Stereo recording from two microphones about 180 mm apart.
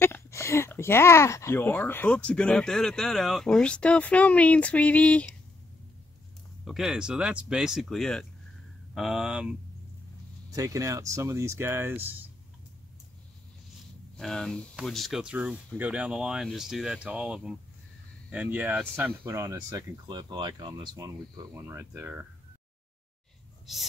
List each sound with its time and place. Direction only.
0.0 s speech: 15° left (ahead or behind)
6.6 s speech: centre (ahead or behind)
10.5 s speech: 20° right (ahead or behind)
14.1 s speech: 5° left (ahead or behind)
23.7 s speech: centre (ahead or behind)